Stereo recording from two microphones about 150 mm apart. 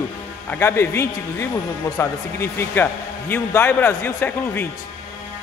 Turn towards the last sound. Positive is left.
turn(degrees=15)  # may be behind; listen again after turning